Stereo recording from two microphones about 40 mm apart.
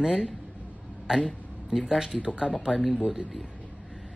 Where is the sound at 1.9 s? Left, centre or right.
Centre.